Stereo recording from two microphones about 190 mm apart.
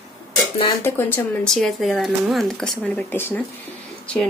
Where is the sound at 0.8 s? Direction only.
10° left (ahead or behind).